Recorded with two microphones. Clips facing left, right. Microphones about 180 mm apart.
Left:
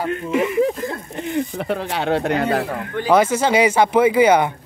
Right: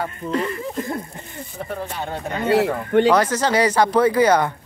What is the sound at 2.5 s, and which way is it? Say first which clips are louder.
Speech: right 4 dB; 80° right.